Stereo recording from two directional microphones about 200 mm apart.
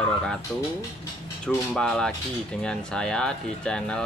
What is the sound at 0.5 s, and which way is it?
Speech, 5° left (ahead or behind).